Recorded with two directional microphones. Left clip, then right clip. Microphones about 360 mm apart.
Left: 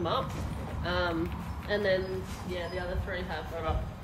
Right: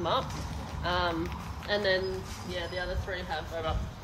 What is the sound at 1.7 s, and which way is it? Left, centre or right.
Speech, right.